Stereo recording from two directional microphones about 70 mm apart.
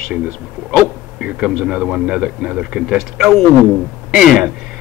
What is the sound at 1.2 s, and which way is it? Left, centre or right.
Speech, centre.